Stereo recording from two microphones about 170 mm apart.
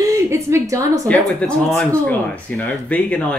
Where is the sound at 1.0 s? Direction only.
5° left (ahead or behind).